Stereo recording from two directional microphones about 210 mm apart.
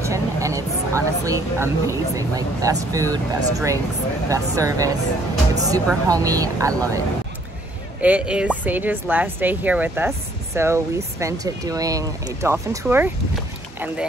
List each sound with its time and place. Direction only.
0.0 s speech: 15° right (ahead or behind)
8.0 s speech: 5° right (ahead or behind)